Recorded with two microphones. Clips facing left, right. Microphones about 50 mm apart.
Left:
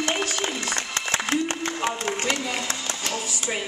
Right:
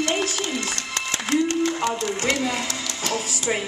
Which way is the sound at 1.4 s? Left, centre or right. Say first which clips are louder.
Right 6 dB; left.